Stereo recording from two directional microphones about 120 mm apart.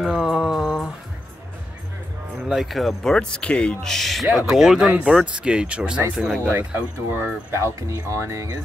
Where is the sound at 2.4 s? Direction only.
5° right (ahead or behind).